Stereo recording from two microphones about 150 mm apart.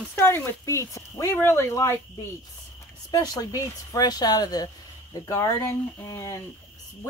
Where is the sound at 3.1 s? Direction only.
25° left (ahead or behind).